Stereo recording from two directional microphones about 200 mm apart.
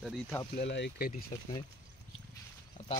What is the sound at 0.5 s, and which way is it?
Speech, 60° left (ahead or behind).